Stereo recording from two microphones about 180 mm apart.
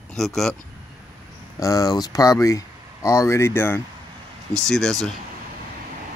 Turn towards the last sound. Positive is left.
turn(degrees=0)  # may be behind; listen again after turning